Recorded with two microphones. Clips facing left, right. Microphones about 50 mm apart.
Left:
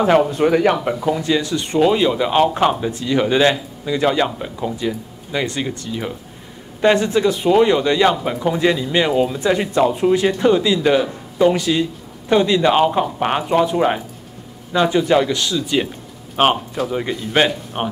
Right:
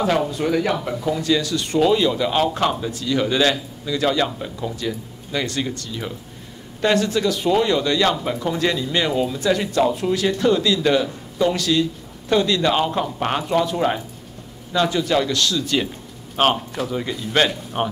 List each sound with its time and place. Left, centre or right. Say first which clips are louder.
0.0 s speech: left 6 dB; left